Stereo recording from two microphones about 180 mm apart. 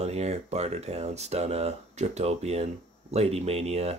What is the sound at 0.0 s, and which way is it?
Speech, 35° right (ahead or behind).